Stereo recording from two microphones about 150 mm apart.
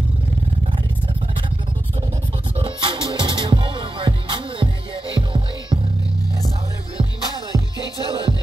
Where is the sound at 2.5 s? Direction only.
35° right (ahead or behind).